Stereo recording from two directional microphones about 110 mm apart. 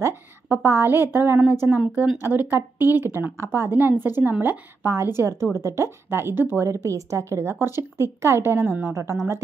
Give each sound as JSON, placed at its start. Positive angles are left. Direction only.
{"t": 0.0, "sound": "a woman's voice", "side_deg": -20}
{"t": 1.8, "sound": "speech", "side_deg": -5}
{"t": 2.2, "sound": "a woman's voice", "side_deg": -20}